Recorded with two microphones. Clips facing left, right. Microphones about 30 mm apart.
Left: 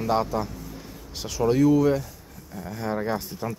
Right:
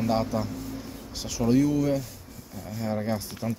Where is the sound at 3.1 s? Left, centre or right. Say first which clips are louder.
Left 1 dB; centre.